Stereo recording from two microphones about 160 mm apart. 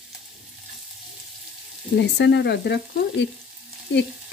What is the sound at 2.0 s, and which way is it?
Speech, 90° left.